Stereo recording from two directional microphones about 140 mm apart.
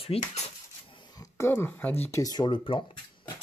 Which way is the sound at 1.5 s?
15° left (ahead or behind).